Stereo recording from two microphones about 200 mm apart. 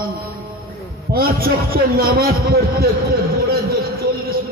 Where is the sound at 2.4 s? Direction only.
50° right (ahead or behind).